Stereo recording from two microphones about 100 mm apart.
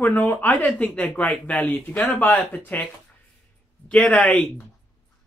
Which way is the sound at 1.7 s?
15° left (ahead or behind).